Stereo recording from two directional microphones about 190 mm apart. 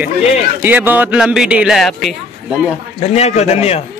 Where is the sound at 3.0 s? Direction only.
35° left (ahead or behind).